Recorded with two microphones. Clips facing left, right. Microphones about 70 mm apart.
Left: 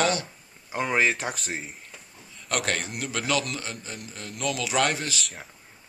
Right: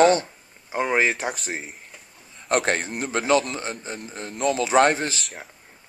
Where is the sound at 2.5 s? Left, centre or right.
Right.